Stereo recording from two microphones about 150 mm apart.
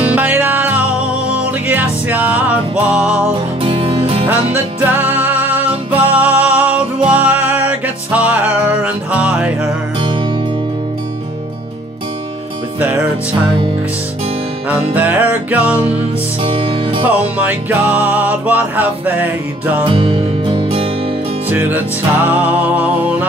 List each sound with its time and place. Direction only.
0.0 s music: 10° right (ahead or behind)
3.6 s music: 35° right (ahead or behind)
4.3 s music: 15° right (ahead or behind)
15.0 s music: 10° right (ahead or behind)
16.4 s music: 35° right (ahead or behind)
17.1 s music: 10° right (ahead or behind)
19.9 s music: 35° right (ahead or behind)
21.5 s music: 10° right (ahead or behind)